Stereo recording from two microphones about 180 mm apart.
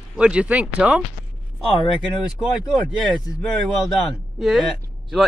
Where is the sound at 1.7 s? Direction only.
30° left (ahead or behind).